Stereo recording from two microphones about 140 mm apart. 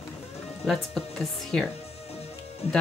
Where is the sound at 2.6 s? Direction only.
50° left (ahead or behind).